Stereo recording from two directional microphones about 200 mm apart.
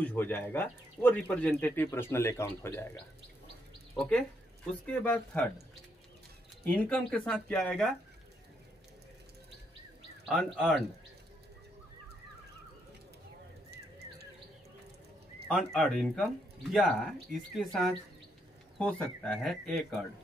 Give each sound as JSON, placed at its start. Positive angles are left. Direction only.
{"t": 0.0, "sound": "speech", "side_deg": 10}
{"t": 3.9, "sound": "speech", "side_deg": 0}
{"t": 6.6, "sound": "speech", "side_deg": 5}
{"t": 10.2, "sound": "speech", "side_deg": 0}
{"t": 13.7, "sound": "bird", "side_deg": -55}
{"t": 15.5, "sound": "speech", "side_deg": 0}